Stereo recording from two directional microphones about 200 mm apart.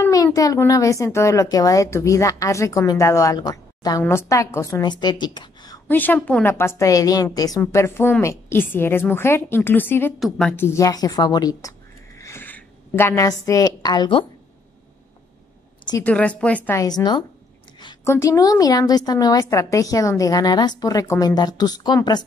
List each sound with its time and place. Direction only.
0.0 s a woman's voice: 15° left (ahead or behind)
5.9 s a woman's voice: 10° left (ahead or behind)
10.1 s a woman's voice: centre (ahead or behind)
10.5 s a woman's voice: 10° left (ahead or behind)
16.0 s a woman's voice: 5° left (ahead or behind)